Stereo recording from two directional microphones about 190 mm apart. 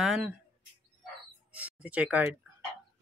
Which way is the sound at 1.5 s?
10° right (ahead or behind).